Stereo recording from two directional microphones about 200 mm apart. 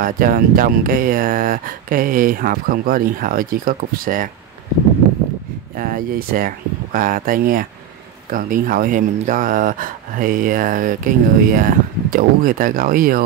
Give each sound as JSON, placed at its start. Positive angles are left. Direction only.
{"t": 0.0, "sound": "speech", "side_deg": -45}
{"t": 5.8, "sound": "speech", "side_deg": -45}